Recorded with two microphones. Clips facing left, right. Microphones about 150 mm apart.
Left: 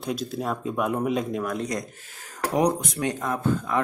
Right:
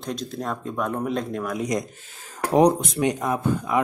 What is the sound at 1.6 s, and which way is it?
Speech, 20° right (ahead or behind).